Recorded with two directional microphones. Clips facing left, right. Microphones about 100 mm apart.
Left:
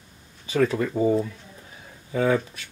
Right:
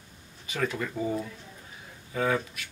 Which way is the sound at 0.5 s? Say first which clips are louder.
Left 8 dB; 35° left (ahead or behind).